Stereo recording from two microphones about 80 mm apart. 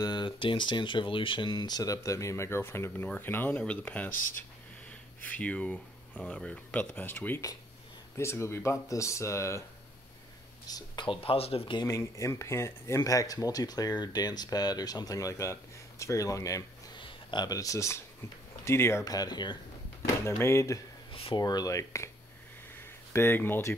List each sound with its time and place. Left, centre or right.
0.0 s speech: left
1.8 s speech: left
8.2 s speech: left
10.7 s speech: left
16.9 s a sound: left
17.5 s speech: left
19.0 s speech: left
20.2 s speech: left
21.4 s speech: left
22.8 s a sound: left